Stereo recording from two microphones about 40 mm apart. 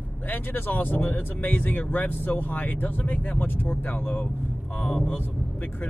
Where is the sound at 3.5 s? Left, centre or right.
Left.